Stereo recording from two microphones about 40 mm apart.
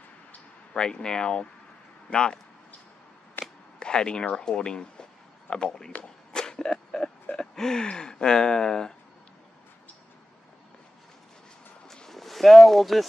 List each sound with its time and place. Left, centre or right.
0.7 s speech: centre
3.4 s a sound: left
3.8 s speech: left
6.3 s a sound: centre
7.5 s speech: centre
12.1 s speech: centre